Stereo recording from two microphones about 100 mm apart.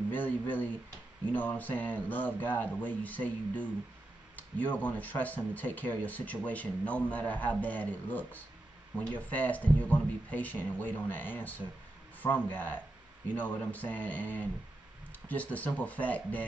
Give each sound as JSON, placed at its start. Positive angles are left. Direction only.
{"t": 0.1, "sound": "speech", "side_deg": 20}